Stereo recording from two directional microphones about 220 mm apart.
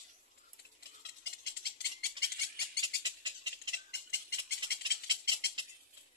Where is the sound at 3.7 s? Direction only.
50° left (ahead or behind).